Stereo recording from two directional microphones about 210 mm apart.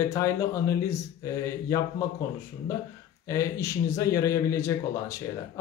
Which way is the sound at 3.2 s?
15° left (ahead or behind).